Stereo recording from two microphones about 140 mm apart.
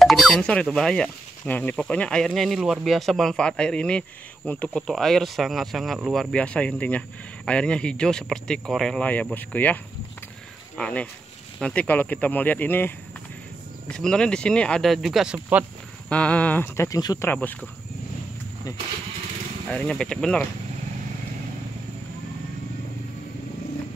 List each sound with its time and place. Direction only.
0.0 s speech: centre (ahead or behind)
10.8 s speech: 10° left (ahead or behind); by 15.6 s 10° right (ahead or behind)
16.1 s speech: 10° left (ahead or behind); by 17.3 s 25° left (ahead or behind)
17.3 s speech: 10° left (ahead or behind)
19.7 s speech: 5° left (ahead or behind)